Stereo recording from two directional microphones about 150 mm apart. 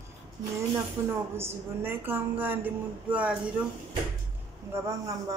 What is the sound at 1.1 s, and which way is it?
A woman's voice, 15° right (ahead or behind).